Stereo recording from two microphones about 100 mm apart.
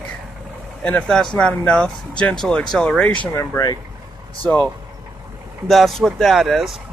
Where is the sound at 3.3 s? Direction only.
35° left (ahead or behind).